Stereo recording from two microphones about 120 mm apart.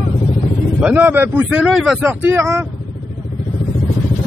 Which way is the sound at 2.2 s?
20° right (ahead or behind).